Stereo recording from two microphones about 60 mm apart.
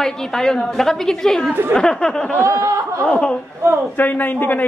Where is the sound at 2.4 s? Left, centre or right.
Right.